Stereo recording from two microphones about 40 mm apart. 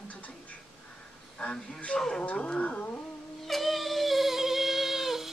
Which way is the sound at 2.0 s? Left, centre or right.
Centre.